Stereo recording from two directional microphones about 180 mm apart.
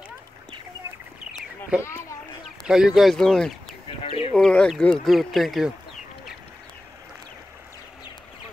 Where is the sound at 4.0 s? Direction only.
30° left (ahead or behind).